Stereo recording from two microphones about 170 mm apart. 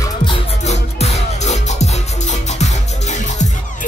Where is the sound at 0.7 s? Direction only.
40° left (ahead or behind).